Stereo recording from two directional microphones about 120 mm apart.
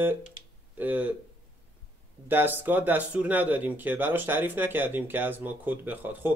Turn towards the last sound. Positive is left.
turn(degrees=-15)  # may be behind; listen again after turning